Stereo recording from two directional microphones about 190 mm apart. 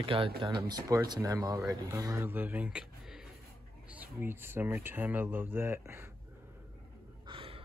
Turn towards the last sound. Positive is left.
turn(degrees=-30)  # may be behind; listen again after turning